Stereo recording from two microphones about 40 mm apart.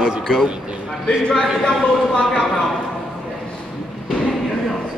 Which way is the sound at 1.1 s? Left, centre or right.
Centre.